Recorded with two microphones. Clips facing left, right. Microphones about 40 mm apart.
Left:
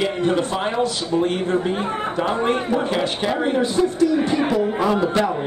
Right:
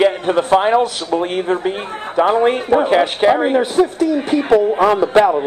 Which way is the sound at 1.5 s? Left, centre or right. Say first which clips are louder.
Right 2 dB; right.